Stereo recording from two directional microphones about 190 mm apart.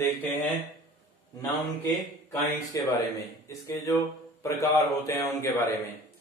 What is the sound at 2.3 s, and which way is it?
Speech, 20° left (ahead or behind).